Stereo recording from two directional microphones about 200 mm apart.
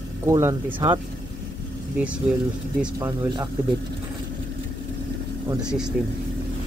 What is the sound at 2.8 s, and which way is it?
Speech, 15° right (ahead or behind).